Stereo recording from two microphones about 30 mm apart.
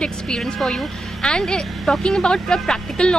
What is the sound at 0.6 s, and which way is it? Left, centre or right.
Speech, centre.